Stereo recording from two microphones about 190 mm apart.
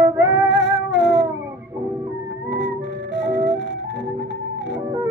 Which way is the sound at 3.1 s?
70° left (ahead or behind).